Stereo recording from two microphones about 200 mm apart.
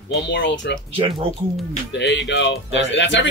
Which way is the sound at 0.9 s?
30° right (ahead or behind).